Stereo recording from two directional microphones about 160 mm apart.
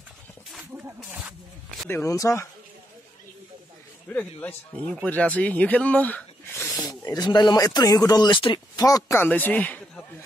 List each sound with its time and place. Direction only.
1.9 s speech: 15° left (ahead or behind)
4.1 s speech: 10° left (ahead or behind)